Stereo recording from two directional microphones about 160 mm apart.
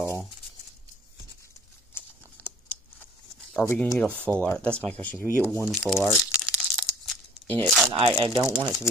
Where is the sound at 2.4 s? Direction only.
10° left (ahead or behind).